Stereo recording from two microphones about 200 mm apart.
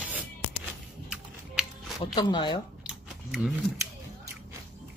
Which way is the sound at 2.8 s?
5° right (ahead or behind).